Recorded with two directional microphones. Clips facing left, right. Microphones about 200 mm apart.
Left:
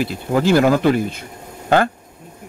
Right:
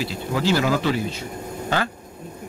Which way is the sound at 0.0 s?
50° left (ahead or behind).